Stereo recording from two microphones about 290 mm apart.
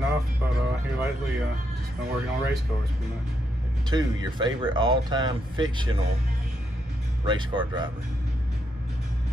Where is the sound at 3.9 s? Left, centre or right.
Centre.